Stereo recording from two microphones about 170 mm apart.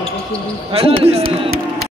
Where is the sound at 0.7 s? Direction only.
35° right (ahead or behind).